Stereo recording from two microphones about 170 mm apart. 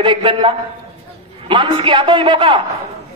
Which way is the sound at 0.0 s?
30° right (ahead or behind).